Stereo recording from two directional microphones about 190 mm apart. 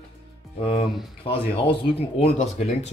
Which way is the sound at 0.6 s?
30° left (ahead or behind).